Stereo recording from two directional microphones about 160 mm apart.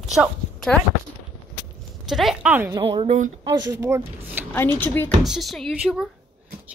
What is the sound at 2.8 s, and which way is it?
Speech, 35° right (ahead or behind).